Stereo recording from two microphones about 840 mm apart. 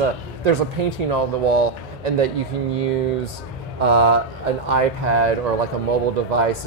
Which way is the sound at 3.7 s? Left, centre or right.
Right.